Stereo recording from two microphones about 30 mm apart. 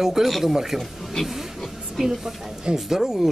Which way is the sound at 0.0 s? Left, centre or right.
Centre.